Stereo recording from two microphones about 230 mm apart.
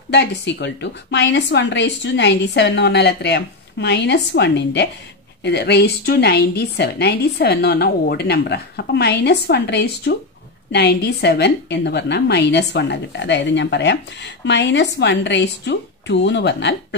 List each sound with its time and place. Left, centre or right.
0.1 s a woman's voice: left